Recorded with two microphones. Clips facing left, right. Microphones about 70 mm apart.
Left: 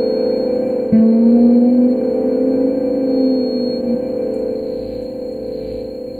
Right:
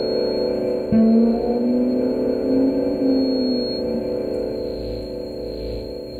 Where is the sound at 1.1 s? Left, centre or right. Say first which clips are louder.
Left 7 dB; left.